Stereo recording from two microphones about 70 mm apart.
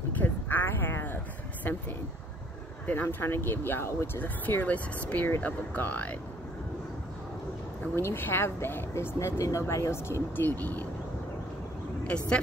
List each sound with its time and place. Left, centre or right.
0.2 s a sound: left
2.9 s speech: left
4.2 s speech: left
7.9 s speech: left
10.4 s speech: left